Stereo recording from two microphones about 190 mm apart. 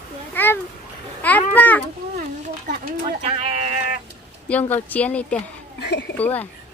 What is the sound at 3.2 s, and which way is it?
Sheep, 35° right (ahead or behind).